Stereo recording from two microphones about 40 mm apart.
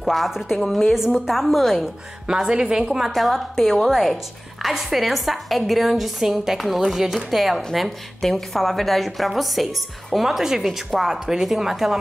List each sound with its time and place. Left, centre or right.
0.3 s a woman's voice: centre
2.2 s speech: centre
3.1 s a woman's voice: centre